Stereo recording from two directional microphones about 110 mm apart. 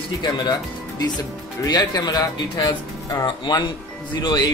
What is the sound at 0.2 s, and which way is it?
Speech, 40° left (ahead or behind).